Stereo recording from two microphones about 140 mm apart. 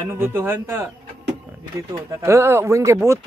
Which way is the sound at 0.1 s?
15° right (ahead or behind).